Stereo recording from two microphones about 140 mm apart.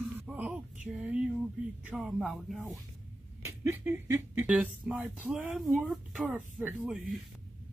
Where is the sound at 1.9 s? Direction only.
Centre (ahead or behind).